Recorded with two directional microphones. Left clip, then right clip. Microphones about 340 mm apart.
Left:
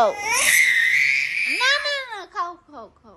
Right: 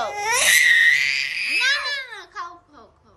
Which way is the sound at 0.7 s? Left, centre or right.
Centre.